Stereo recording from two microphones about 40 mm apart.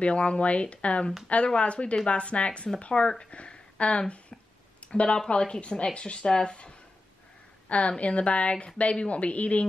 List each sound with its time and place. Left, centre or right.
0.0 s a woman's voice: left